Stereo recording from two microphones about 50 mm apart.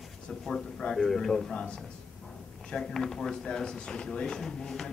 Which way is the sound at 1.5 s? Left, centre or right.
Left.